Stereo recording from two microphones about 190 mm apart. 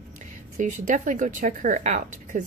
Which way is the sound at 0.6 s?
40° right (ahead or behind).